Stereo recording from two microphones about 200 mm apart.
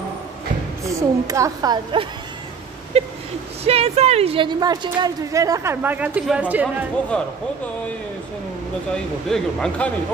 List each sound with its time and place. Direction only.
0.8 s speech: 15° right (ahead or behind)
2.9 s a sound: 30° right (ahead or behind)
3.6 s speech: 30° right (ahead or behind); by 6.9 s 5° right (ahead or behind)
8.9 s speech: 5° left (ahead or behind)